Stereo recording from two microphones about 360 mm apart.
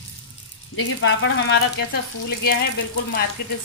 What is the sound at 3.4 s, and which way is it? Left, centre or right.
Speech, left.